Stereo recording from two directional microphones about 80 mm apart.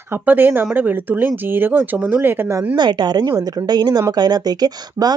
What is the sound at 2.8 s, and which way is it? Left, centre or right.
A woman's voice, right.